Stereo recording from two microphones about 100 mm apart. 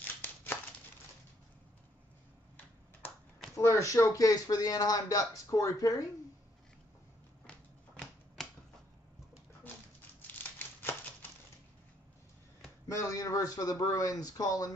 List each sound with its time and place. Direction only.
0.0 s a sound: 20° left (ahead or behind)
3.5 s speech: 30° left (ahead or behind)
7.4 s typewriter: 10° left (ahead or behind)
12.8 s speech: 30° left (ahead or behind)